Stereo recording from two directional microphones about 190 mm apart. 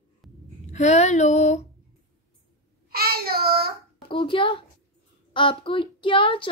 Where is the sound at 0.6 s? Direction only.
35° left (ahead or behind).